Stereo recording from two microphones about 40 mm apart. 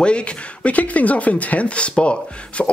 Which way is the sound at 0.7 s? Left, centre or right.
Left.